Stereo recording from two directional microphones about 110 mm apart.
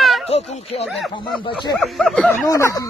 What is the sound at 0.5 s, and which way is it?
Speech, 75° left (ahead or behind).